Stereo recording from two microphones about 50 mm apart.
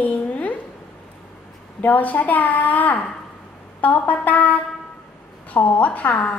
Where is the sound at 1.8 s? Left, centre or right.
Left.